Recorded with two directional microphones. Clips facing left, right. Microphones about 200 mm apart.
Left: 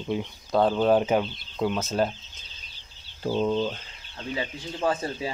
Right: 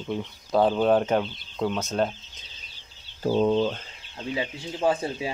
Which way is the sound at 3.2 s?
50° right (ahead or behind).